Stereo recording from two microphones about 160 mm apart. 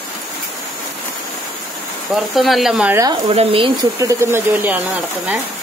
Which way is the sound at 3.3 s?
35° right (ahead or behind).